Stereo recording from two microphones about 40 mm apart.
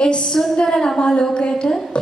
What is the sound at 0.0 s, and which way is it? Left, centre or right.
Speech, left.